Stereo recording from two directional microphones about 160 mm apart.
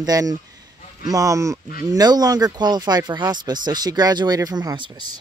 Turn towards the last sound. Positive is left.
turn(degrees=-30)  # may be behind; listen again after turning